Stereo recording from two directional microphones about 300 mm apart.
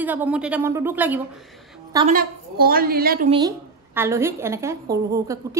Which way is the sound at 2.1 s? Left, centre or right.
Right.